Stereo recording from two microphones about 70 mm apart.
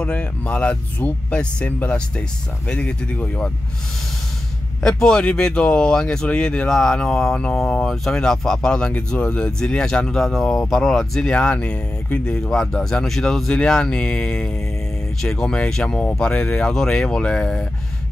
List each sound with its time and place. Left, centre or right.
0.0 s speech: centre
4.8 s speech: centre